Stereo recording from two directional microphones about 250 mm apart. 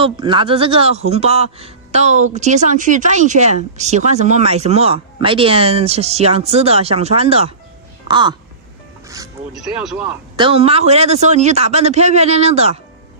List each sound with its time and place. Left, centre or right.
0.0 s speech: centre
9.5 s speech: centre
10.3 s speech: right